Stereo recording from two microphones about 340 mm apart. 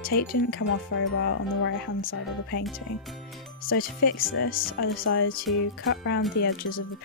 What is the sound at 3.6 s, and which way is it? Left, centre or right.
Speech, left.